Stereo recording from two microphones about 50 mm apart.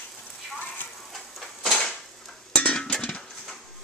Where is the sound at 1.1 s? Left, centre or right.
Centre.